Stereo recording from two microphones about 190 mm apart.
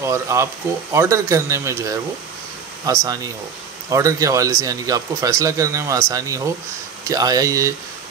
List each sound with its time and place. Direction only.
0.0 s speech: 15° right (ahead or behind)